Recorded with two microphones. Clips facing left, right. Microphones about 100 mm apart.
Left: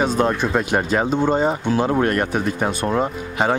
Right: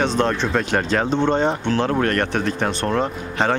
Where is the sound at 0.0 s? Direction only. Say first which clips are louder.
Left 1 dB; 10° left (ahead or behind).